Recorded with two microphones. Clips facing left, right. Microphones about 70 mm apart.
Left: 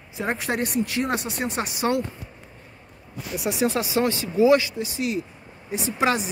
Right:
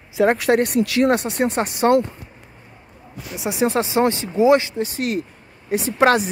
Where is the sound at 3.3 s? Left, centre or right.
Right.